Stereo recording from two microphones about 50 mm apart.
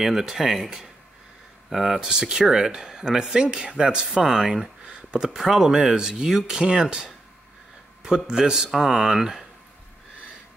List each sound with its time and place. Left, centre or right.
0.0 s speech: centre